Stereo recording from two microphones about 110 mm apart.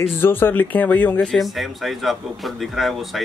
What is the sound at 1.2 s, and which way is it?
Speech, centre (ahead or behind).